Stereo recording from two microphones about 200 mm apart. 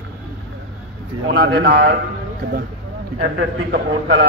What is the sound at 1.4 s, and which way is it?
A man's voice, 55° right (ahead or behind).